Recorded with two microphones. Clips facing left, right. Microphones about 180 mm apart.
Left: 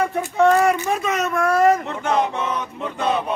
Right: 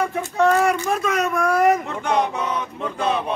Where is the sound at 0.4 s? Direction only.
Centre (ahead or behind).